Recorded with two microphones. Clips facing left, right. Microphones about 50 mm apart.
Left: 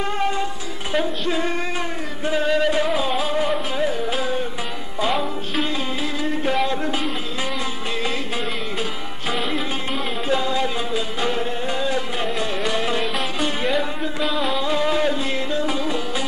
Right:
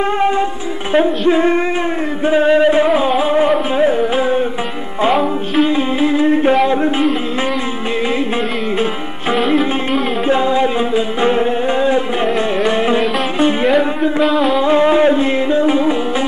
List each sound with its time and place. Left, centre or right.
0.2 s music: right
5.7 s music: right
6.5 s a sound: right
9.4 s music: centre
10.2 s music: right
14.2 s music: centre
14.6 s music: right